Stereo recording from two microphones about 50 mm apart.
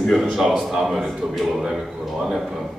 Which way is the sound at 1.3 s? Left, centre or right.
Centre.